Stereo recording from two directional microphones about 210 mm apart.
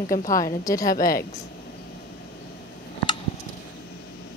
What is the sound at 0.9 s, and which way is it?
Speech, 40° left (ahead or behind).